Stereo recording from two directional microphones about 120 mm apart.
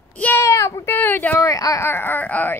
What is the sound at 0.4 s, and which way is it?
Baby cry, 25° left (ahead or behind).